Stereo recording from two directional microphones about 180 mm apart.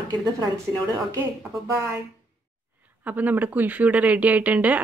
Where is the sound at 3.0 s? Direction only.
10° right (ahead or behind).